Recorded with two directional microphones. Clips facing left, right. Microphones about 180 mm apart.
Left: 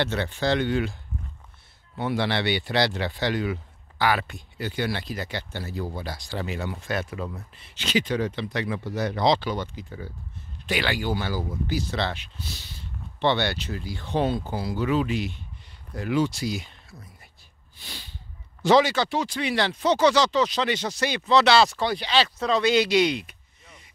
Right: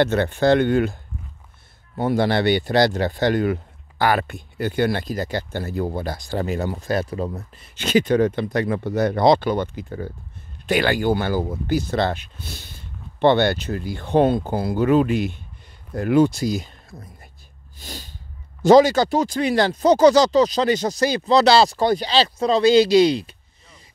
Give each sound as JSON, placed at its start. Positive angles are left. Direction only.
{"t": 0.0, "sound": "speech", "side_deg": -50}
{"t": 2.0, "sound": "speech", "side_deg": -45}
{"t": 17.7, "sound": "a sound", "side_deg": -45}
{"t": 18.6, "sound": "speech", "side_deg": -40}